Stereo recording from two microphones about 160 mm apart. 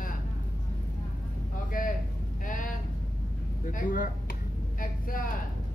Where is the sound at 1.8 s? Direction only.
60° left (ahead or behind).